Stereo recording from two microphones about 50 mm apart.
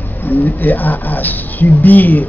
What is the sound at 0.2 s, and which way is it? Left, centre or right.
Speech, left.